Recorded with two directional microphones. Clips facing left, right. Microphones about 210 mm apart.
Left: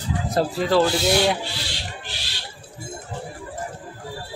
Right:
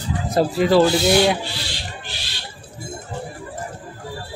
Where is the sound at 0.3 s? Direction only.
10° right (ahead or behind).